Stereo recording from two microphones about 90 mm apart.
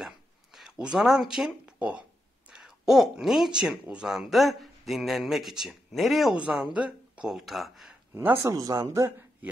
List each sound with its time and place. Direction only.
0.6 s speech: 5° right (ahead or behind)
8.1 s speech: 25° right (ahead or behind)
8.5 s speech: 40° right (ahead or behind)
9.4 s speech: 20° right (ahead or behind)